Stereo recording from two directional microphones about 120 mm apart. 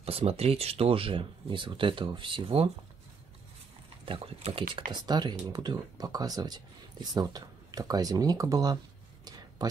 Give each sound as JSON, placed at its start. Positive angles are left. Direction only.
{"t": 0.0, "sound": "speech", "side_deg": -55}
{"t": 4.0, "sound": "speech", "side_deg": -50}